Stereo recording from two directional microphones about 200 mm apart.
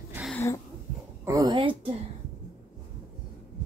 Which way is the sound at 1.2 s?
20° right (ahead or behind).